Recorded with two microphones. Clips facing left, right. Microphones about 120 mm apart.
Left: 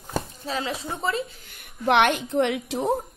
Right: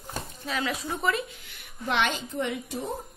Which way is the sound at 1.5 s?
60° left (ahead or behind).